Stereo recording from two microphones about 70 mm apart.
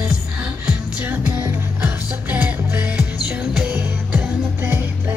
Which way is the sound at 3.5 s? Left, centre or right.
Centre.